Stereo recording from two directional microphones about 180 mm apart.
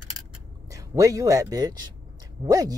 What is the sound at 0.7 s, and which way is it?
Speech, 20° right (ahead or behind).